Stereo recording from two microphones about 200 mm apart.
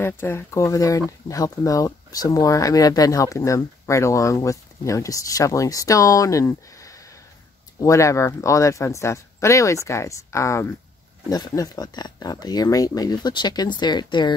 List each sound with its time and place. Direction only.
0.0 s speech: 10° left (ahead or behind)